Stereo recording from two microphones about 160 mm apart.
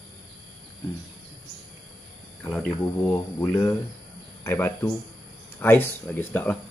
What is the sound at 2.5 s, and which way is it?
Cricket, 5° left (ahead or behind).